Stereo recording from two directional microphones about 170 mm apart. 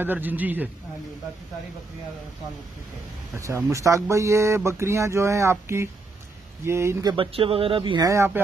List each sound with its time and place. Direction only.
0.0 s speech: 10° right (ahead or behind)
3.3 s speech: 15° right (ahead or behind)
8.1 s speech: 15° right (ahead or behind)